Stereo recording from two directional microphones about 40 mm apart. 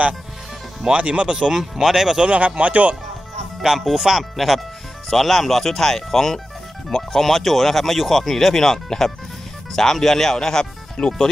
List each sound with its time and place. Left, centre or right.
0.9 s speech: right
1.3 s speech: centre
2.2 s speech: right
3.6 s speech: centre